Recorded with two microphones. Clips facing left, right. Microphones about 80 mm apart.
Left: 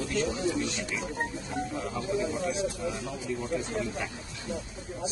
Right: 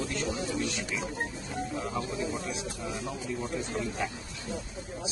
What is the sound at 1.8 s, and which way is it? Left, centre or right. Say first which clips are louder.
Speech: left 2 dB; centre.